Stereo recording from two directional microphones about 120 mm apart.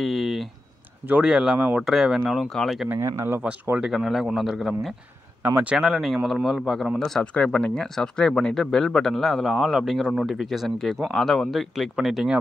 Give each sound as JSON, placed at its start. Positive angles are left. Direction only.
{"t": 0.0, "sound": "a sound", "side_deg": 0}
{"t": 1.0, "sound": "speech", "side_deg": -10}
{"t": 2.9, "sound": "speech", "side_deg": -20}
{"t": 5.4, "sound": "speech", "side_deg": -15}